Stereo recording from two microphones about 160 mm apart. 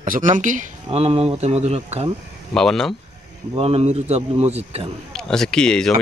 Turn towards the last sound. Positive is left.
turn(degrees=5)  # may be behind; listen again after turning